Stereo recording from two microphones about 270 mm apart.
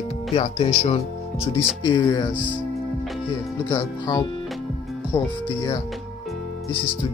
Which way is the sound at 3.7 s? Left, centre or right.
Centre.